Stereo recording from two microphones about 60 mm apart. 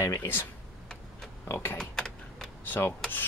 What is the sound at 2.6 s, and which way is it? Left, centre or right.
Rub, left.